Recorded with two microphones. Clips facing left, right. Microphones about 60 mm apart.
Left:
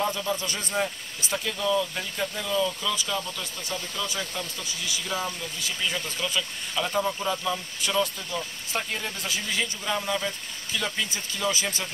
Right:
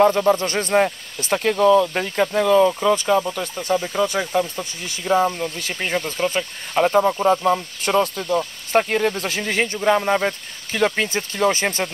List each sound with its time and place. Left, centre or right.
0.0 s speech: right